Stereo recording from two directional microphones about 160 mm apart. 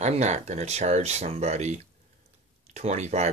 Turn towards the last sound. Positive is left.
turn(degrees=-45)  # may be behind; listen again after turning